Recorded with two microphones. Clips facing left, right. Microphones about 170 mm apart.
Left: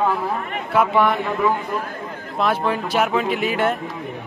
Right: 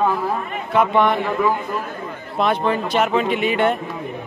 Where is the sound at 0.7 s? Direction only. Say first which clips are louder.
Right 1 dB; 5° left (ahead or behind).